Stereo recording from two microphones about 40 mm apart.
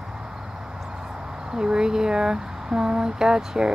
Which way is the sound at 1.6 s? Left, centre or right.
Centre.